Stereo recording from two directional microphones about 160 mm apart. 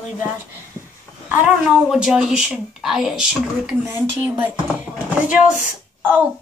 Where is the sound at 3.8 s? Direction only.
15° right (ahead or behind).